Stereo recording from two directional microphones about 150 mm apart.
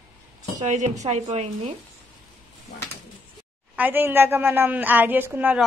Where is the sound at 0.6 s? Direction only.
50° right (ahead or behind).